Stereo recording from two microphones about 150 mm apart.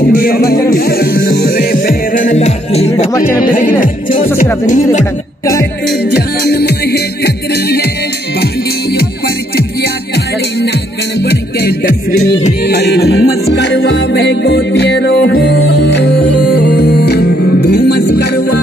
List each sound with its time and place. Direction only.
0.2 s music: 80° left; by 2.9 s 45° left (ahead or behind)
3.1 s speech: 20° left (ahead or behind)
3.4 s speech: 70° left (ahead or behind)
3.8 s music: 65° left (ahead or behind)
6.0 s music: 90° left
11.2 s music: 90° left